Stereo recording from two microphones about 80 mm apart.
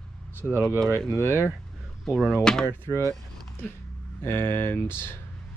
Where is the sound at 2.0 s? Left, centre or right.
Centre.